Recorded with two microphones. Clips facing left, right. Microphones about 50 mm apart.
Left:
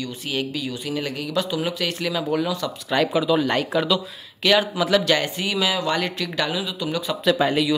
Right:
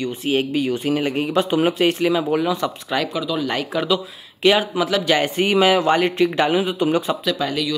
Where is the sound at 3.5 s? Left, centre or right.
Centre.